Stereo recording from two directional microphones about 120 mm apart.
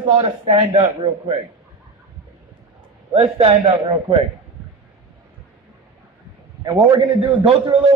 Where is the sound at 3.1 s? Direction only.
55° right (ahead or behind).